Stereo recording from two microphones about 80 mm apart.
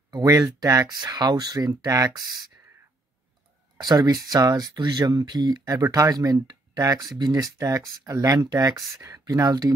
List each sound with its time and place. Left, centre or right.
0.1 s speech: right
0.8 s speech: right
3.8 s speech: right
7.5 s speech: right